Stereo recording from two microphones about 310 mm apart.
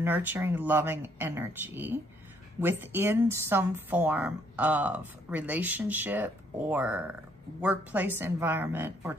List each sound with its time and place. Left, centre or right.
0.0 s speech: centre